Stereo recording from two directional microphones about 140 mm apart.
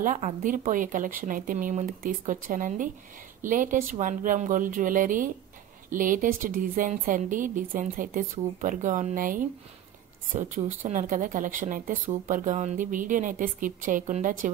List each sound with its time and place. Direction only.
0.0 s speech: 65° right (ahead or behind)
10.3 s speech: 65° right (ahead or behind)